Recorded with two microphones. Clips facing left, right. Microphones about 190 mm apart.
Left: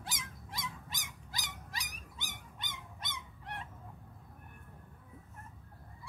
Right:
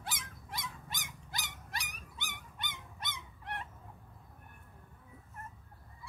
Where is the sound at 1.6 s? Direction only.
60° right (ahead or behind).